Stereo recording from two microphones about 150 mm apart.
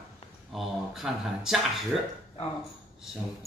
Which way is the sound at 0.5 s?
Centre (ahead or behind).